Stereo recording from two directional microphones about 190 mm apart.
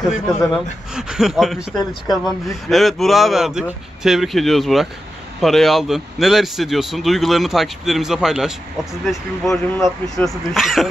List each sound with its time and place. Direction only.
0.0 s speech: centre (ahead or behind)
1.8 s speech: 20° left (ahead or behind)
2.7 s speech: centre (ahead or behind)